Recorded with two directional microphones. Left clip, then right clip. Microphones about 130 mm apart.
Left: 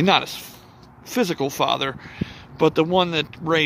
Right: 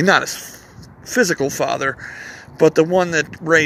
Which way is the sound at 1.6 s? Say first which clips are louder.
Right 2 dB; 10° left (ahead or behind).